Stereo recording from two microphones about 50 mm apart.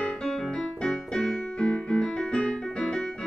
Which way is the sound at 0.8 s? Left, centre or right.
Centre.